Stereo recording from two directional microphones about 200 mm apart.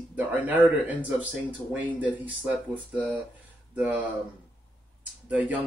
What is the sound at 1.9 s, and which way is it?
Speech, 5° right (ahead or behind).